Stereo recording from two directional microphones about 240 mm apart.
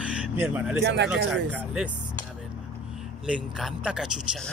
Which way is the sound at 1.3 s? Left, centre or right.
Centre.